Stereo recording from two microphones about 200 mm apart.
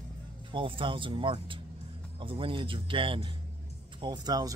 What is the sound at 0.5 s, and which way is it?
Speech, 25° right (ahead or behind).